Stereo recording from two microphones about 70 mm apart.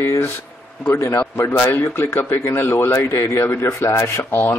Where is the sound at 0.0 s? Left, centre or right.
Left.